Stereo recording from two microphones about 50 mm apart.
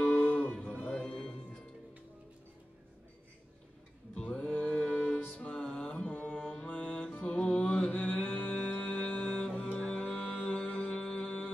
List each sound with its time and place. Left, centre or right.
0.0 s music: left
1.0 s music: centre
4.1 s music: centre